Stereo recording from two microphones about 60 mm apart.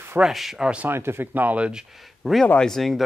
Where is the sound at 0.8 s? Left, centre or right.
Right.